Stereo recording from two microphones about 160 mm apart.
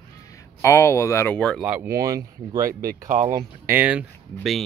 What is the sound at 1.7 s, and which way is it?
Speech, 15° right (ahead or behind).